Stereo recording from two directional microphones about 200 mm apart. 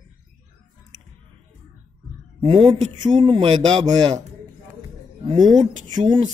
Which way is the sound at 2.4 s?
25° right (ahead or behind).